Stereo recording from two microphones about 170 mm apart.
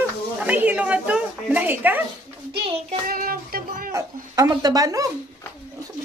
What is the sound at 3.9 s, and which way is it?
Speech, 20° right (ahead or behind).